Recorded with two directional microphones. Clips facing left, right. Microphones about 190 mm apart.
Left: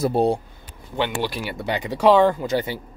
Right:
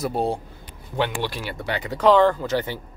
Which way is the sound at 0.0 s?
30° left (ahead or behind).